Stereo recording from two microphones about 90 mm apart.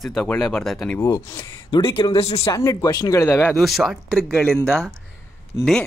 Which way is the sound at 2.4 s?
40° left (ahead or behind).